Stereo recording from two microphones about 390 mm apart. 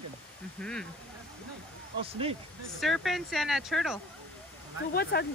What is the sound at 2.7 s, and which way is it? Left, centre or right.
Speech, centre.